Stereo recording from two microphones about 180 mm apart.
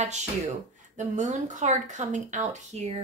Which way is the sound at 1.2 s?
40° right (ahead or behind).